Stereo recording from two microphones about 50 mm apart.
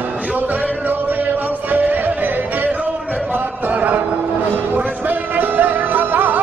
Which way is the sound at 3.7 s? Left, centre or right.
Right.